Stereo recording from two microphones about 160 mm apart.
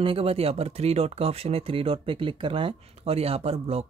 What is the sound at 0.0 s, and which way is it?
Speech, 35° right (ahead or behind).